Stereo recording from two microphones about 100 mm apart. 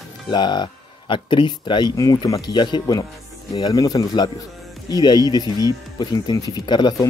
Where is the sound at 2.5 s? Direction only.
50° left (ahead or behind).